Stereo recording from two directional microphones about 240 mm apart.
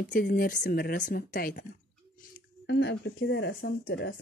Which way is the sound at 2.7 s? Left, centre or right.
Left.